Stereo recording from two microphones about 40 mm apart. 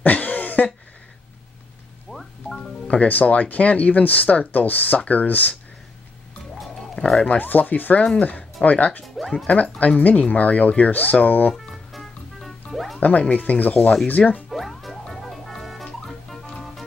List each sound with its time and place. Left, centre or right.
0.0 s a sound: left
2.0 s music: centre
2.6 s speech: left
7.2 s speech: left
9.0 s speech: centre
9.5 s speech: left
11.5 s music: centre
13.3 s speech: left
14.5 s music: centre